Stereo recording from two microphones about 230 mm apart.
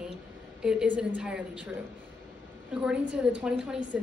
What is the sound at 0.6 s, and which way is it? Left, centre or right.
A woman's voice, centre.